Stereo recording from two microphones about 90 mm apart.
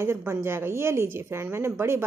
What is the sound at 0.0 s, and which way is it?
Speech, 30° right (ahead or behind).